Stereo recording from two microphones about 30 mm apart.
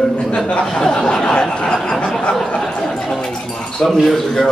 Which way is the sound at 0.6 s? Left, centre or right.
Left.